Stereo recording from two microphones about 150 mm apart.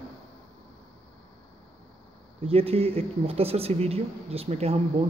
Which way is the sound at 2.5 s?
40° right (ahead or behind).